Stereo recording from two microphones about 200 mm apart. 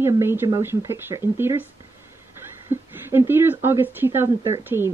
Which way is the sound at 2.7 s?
10° right (ahead or behind).